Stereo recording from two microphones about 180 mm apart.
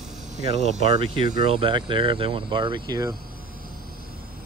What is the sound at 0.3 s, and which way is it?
Speech, 40° right (ahead or behind).